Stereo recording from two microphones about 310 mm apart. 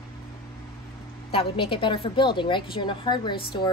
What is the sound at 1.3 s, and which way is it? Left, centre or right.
A woman's voice, centre.